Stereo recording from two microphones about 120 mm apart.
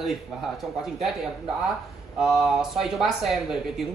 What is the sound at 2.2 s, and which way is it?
Speech, centre (ahead or behind).